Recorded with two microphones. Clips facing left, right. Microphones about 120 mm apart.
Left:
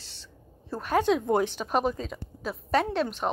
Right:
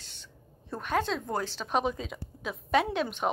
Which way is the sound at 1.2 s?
25° left (ahead or behind).